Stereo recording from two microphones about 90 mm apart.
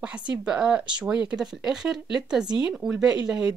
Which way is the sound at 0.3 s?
10° right (ahead or behind).